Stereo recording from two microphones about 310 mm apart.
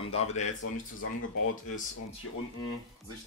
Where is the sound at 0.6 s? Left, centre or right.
Left.